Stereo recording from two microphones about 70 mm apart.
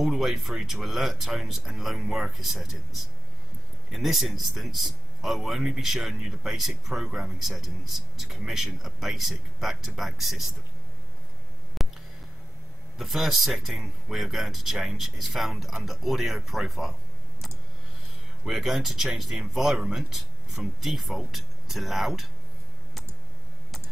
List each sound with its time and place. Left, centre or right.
0.0 s speech: centre
11.8 s a sound: centre
12.9 s speech: centre
18.4 s speech: centre